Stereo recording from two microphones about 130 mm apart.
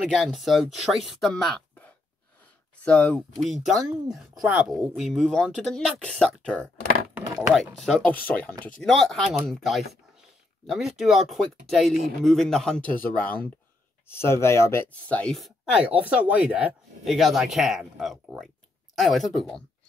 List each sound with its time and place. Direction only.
0.0 s speech: centre (ahead or behind)
2.8 s speech: 10° left (ahead or behind)
7.2 s a sound: 20° right (ahead or behind)
7.5 s speech: centre (ahead or behind)
15.3 s speech: 5° right (ahead or behind)